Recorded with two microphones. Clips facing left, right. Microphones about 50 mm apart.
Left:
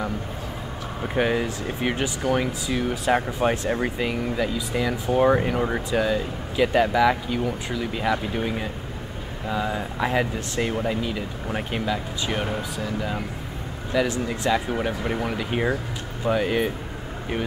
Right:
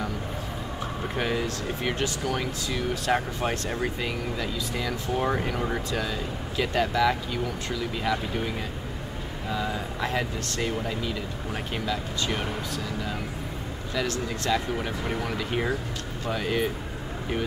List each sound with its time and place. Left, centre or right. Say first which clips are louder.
1.0 s speech: left 6 dB; centre